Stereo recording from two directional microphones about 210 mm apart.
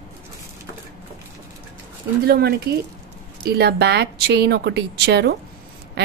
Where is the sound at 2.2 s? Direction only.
45° right (ahead or behind).